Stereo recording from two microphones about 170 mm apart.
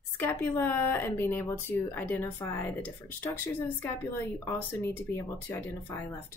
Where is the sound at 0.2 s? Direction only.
15° left (ahead or behind).